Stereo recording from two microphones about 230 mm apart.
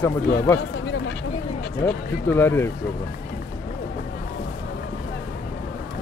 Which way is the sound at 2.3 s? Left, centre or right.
Centre.